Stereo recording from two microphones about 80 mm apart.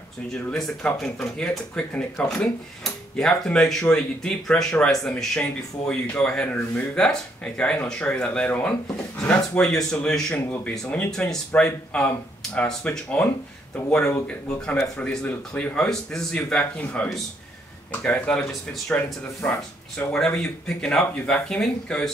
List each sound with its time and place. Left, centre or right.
0.3 s speech: centre
18.5 s speech: centre
19.4 s speech: centre